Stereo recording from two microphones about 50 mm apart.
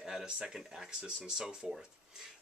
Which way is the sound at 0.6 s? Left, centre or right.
Centre.